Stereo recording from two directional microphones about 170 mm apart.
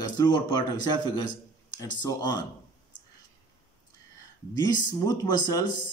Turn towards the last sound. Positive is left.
turn(degrees=25)  # may be behind; listen again after turning